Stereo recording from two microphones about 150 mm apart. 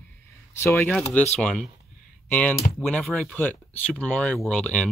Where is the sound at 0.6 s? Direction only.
20° left (ahead or behind).